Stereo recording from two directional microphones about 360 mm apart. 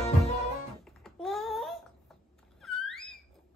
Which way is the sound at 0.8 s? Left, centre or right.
Centre.